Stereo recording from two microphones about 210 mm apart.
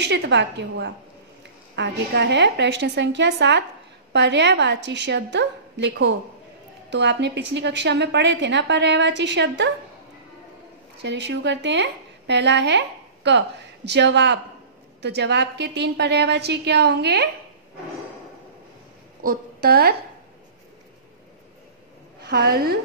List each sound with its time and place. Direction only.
0.0 s a woman's voice: 55° right (ahead or behind)
11.0 s a woman's voice: 55° right (ahead or behind)
19.2 s a woman's voice: 45° right (ahead or behind)
22.2 s a woman's voice: 50° right (ahead or behind)